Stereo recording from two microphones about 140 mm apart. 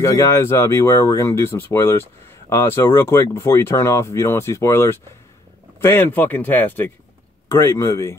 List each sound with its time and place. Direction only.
0.0 s speech: 20° left (ahead or behind)